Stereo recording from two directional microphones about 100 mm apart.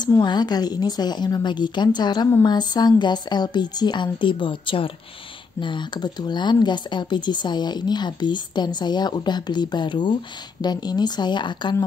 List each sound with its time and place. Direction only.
0.2 s speech: 45° left (ahead or behind)